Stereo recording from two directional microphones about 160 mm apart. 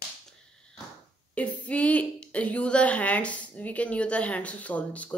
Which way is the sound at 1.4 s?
10° left (ahead or behind).